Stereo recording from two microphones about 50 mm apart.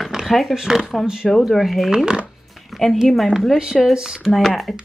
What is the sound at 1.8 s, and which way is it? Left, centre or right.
Speech, centre.